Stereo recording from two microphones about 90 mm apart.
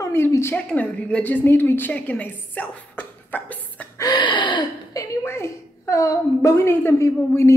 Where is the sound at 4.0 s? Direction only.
50° left (ahead or behind).